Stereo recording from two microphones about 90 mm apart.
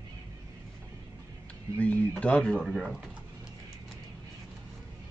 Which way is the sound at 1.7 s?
15° left (ahead or behind).